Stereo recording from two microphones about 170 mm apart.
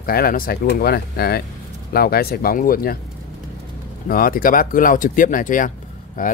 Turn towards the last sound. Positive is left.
turn(degrees=55)  # may be behind; listen again after turning